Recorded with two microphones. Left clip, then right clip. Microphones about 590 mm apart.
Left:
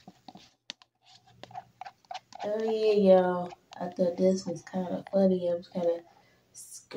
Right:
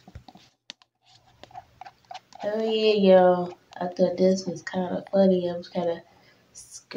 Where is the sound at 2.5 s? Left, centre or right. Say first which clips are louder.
Right 3 dB; left.